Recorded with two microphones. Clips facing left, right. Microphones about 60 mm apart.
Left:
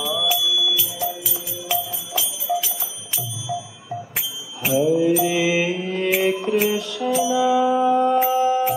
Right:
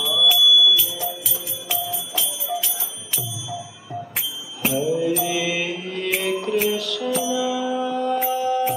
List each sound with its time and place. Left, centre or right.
0.0 s music: centre
1.7 s jingle bell: centre
4.6 s music: centre
5.0 s music: centre
7.0 s music: centre; by 8.7 s left